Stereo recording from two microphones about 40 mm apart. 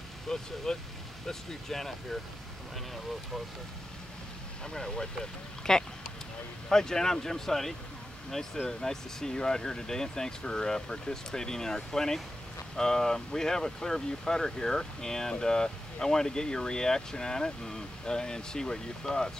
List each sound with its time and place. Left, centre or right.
0.3 s speech: centre
4.7 s speech: centre